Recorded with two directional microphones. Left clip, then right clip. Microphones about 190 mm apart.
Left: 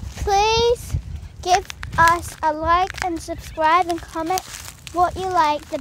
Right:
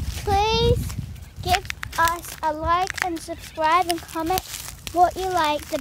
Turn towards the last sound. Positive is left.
turn(degrees=10)  # may be behind; listen again after turning